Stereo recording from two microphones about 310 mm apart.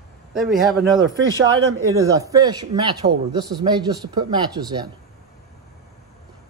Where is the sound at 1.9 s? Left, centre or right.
Centre.